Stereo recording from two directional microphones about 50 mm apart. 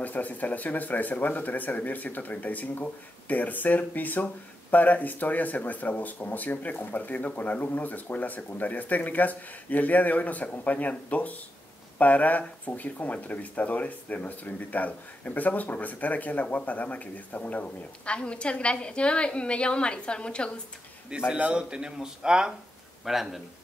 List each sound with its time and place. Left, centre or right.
0.0 s speech: left
21.4 s a man's voice: right
23.0 s speech: centre